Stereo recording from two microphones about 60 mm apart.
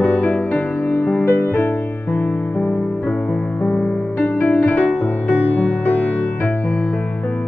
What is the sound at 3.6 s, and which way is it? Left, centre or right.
Music, left.